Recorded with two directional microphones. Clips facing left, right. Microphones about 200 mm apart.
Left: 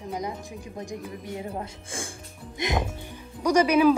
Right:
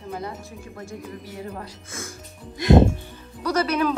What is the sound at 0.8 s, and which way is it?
Speech, 20° left (ahead or behind).